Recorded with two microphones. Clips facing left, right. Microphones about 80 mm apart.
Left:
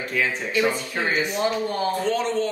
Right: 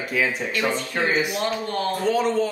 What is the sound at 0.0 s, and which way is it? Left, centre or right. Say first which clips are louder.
A woman's voice: right 1 dB; centre.